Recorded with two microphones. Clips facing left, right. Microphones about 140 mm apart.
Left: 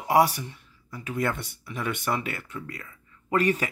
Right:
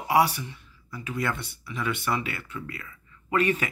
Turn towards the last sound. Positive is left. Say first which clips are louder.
# left 1 dB
turn(degrees=40)  # may be behind; listen again after turning